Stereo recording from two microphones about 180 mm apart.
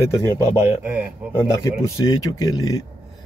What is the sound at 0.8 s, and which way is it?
Speech, 10° right (ahead or behind).